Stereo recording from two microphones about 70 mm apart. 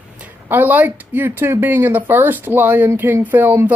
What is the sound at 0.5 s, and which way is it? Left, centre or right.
Speech, right.